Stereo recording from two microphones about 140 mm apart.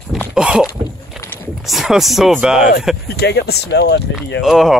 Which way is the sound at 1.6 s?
Centre (ahead or behind).